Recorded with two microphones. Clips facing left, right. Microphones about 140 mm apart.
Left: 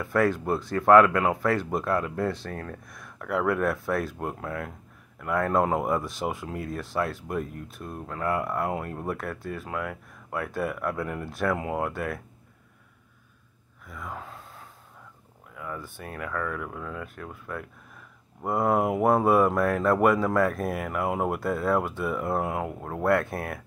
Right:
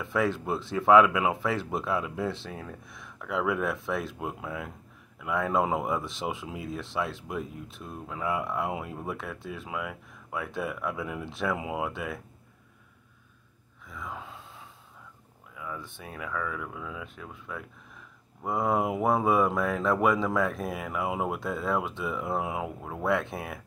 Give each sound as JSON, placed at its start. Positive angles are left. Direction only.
{"t": 0.0, "sound": "speech", "side_deg": 0}
{"t": 13.8, "sound": "gasp", "side_deg": 0}
{"t": 15.5, "sound": "speech", "side_deg": 0}